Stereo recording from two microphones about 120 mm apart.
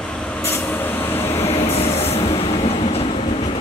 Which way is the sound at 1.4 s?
60° left (ahead or behind).